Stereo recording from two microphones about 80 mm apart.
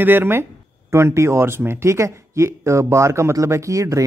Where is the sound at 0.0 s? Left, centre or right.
Right.